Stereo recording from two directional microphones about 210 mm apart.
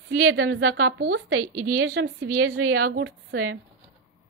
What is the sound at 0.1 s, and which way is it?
Speech, 90° right.